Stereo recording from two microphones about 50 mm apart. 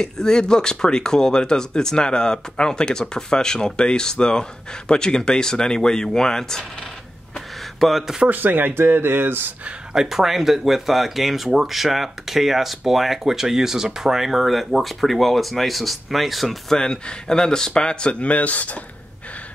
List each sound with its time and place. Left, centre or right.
0.0 s speech: centre
7.8 s speech: centre
8.3 s speech: right
9.9 s speech: centre
16.7 s speech: centre